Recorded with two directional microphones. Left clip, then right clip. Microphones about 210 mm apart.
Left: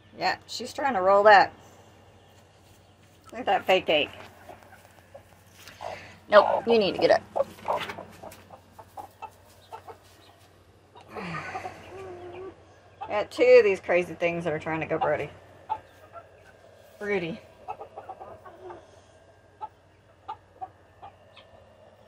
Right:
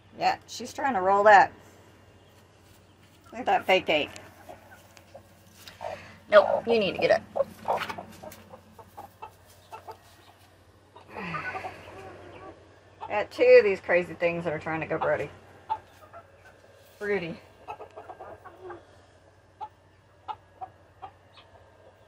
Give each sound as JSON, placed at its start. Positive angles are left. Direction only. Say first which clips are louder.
{"t": 0.2, "sound": "speech", "louder": "right 1 dB", "side_deg": 5}
{"t": 3.3, "sound": "speech", "louder": "even", "side_deg": 0}
{"t": 5.7, "sound": "biting", "louder": "even", "side_deg": 15}
{"t": 6.2, "sound": "a man's voice", "louder": "left 1 dB", "side_deg": 0}
{"t": 6.6, "sound": "a woman's voice", "louder": "left 2 dB", "side_deg": 10}
{"t": 11.1, "sound": "a sound", "louder": "right 1 dB", "side_deg": 15}
{"t": 13.1, "sound": "a woman's voice", "louder": "even", "side_deg": 15}
{"t": 17.0, "sound": "a woman's voice", "louder": "even", "side_deg": 10}